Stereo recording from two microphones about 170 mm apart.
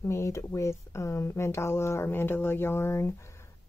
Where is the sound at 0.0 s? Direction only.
15° left (ahead or behind).